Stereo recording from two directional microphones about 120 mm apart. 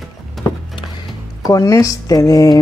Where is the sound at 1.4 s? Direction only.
30° left (ahead or behind).